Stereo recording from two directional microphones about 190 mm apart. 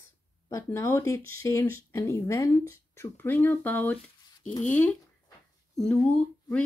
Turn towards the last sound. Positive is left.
turn(degrees=5)  # may be behind; listen again after turning